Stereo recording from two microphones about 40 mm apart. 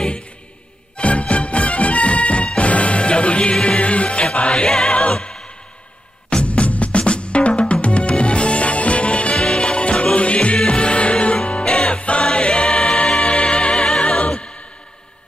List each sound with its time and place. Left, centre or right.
0.9 s music: left
4.9 s music: left
11.6 s music: centre